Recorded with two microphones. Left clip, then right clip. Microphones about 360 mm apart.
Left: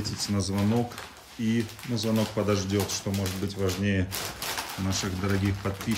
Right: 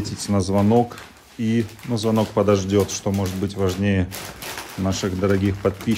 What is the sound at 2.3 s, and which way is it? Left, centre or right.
Speech, centre.